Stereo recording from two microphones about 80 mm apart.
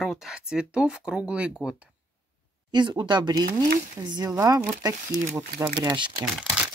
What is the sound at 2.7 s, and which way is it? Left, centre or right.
Speech, right.